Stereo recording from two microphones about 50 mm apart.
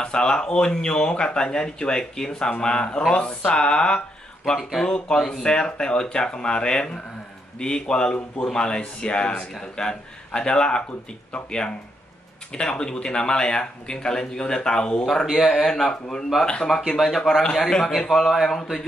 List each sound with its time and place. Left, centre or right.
0.0 s speech: centre
15.3 s speech: centre
17.4 s speech: centre
18.0 s speech: centre